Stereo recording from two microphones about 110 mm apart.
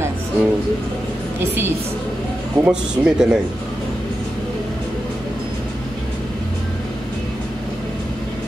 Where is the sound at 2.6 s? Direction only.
10° right (ahead or behind).